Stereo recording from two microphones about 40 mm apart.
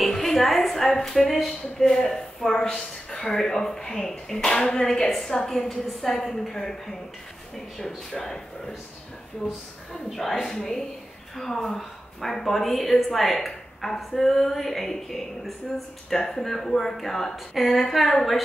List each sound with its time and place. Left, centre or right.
0.0 s a sound: centre
1.0 s a woman's voice: centre
10.1 s a woman's voice: centre